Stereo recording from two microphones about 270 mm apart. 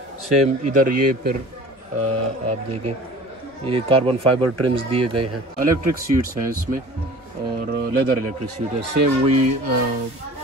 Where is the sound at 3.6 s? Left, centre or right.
Right.